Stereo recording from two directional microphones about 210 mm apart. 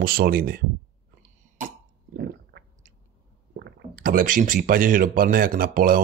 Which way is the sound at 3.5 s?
45° right (ahead or behind).